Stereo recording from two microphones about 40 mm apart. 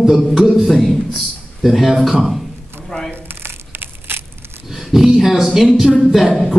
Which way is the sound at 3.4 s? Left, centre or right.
Right.